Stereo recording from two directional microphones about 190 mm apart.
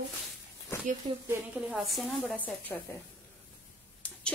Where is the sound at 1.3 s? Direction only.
5° right (ahead or behind).